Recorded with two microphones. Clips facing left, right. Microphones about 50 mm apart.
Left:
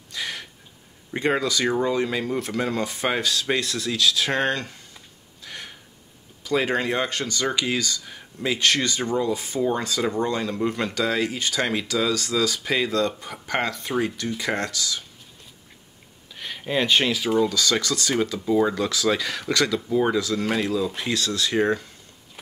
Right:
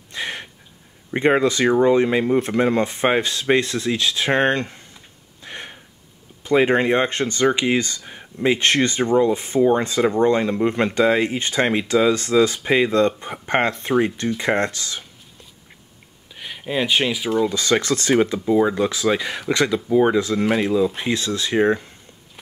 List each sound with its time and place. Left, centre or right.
0.1 s a sound: right
1.1 s speech: right
5.4 s gasp: right
6.4 s speech: right
16.3 s speech: centre
17.5 s speech: right